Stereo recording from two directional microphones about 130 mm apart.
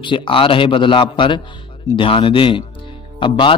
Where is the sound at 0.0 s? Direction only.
40° left (ahead or behind).